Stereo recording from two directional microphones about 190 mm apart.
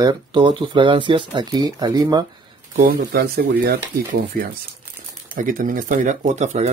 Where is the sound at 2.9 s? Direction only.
55° right (ahead or behind).